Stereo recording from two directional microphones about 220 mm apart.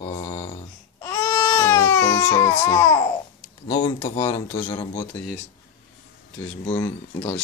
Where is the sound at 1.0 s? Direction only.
10° left (ahead or behind).